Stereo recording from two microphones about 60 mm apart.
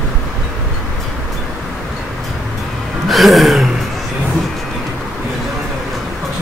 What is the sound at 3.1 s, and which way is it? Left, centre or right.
Music, centre.